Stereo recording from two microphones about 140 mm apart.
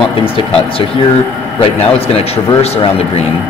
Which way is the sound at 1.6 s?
45° left (ahead or behind).